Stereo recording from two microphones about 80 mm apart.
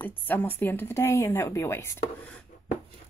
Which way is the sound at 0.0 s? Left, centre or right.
Left.